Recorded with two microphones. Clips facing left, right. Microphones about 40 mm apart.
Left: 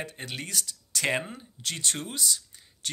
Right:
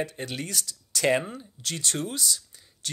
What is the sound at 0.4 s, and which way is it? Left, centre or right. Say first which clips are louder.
Speech: right 2 dB; centre.